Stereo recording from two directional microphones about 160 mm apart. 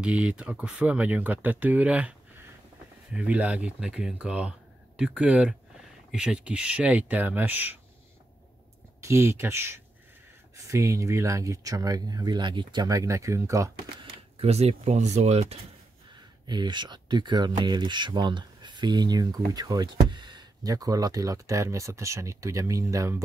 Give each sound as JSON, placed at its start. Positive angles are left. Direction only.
{"t": 0.0, "sound": "speech", "side_deg": -10}
{"t": 9.0, "sound": "speech", "side_deg": -15}
{"t": 14.4, "sound": "speech", "side_deg": -40}
{"t": 16.4, "sound": "speech", "side_deg": -25}